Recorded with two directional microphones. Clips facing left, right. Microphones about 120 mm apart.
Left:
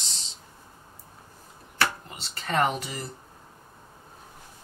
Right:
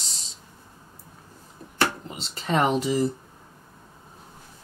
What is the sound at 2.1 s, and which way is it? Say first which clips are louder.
Speech: right 4 dB; 5° right (ahead or behind).